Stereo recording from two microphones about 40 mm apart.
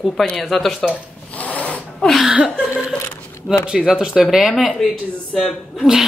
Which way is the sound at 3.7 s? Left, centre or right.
Centre.